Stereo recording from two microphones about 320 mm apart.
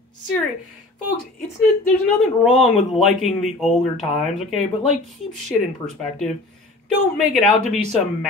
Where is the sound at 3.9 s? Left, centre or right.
Left.